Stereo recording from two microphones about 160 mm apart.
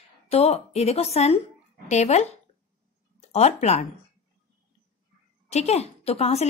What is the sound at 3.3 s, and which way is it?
Speech, 45° left (ahead or behind).